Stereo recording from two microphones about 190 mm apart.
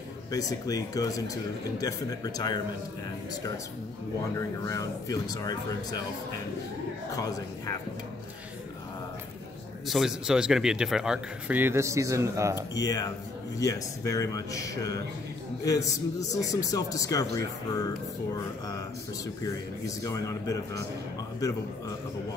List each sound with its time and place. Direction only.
0.3 s speech: 20° left (ahead or behind)
4.4 s speech: 15° left (ahead or behind)
7.1 s speech: 20° left (ahead or behind)
9.8 s speech: centre (ahead or behind)
12.8 s speech: 20° left (ahead or behind)
20.0 s speech: 15° left (ahead or behind)